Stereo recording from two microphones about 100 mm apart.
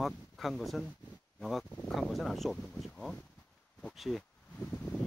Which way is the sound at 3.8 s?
Centre (ahead or behind).